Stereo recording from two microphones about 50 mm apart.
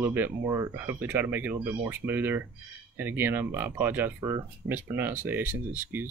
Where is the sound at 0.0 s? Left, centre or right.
Right.